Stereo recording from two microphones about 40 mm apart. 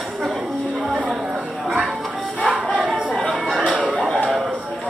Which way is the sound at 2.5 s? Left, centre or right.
Right.